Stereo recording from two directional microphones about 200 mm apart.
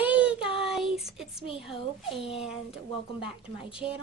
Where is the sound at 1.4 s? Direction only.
25° left (ahead or behind).